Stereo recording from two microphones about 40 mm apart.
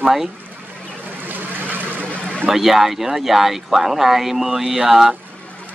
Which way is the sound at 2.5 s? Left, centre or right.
Centre.